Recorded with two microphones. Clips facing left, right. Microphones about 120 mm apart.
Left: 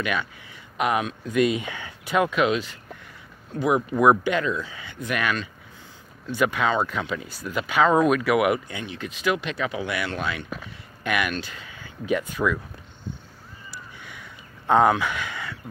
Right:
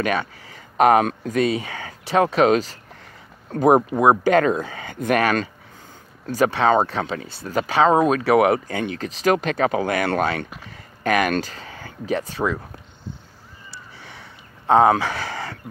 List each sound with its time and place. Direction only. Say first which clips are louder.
0.0 s speech: right 5 dB; 40° right (ahead or behind)
1.4 s speech: even; 35° right (ahead or behind)
3.9 s speech: right 1 dB; 30° right (ahead or behind)
4.3 s speech: right 7 dB; 50° right (ahead or behind)
6.3 s speech: right 5 dB; 35° right (ahead or behind)
13.7 s a sound: even; 30° right (ahead or behind)